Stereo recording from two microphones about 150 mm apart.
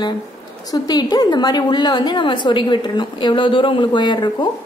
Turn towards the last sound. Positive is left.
turn(degrees=30)  # may be behind; listen again after turning